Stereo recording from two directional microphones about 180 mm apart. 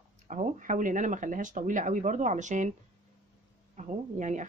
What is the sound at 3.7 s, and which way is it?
Speech, 40° right (ahead or behind).